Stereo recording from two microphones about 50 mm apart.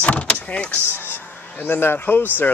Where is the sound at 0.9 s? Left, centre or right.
Left.